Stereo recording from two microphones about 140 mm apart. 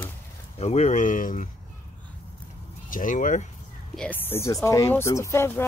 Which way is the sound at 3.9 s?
10° left (ahead or behind).